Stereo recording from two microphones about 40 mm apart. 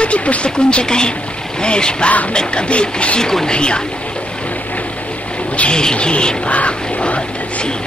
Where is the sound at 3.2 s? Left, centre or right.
Centre.